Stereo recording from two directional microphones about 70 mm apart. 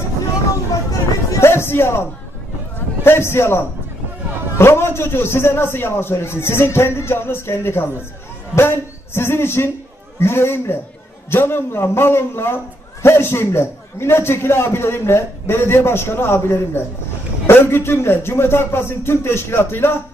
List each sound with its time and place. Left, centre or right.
1.4 s music: left
3.0 s a man's voice: left